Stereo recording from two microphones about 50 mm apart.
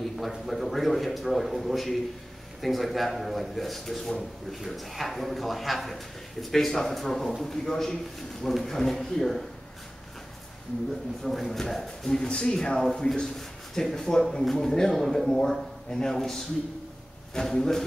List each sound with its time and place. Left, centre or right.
0.0 s a man's voice: centre
11.2 s a man's voice: centre
12.3 s speech: centre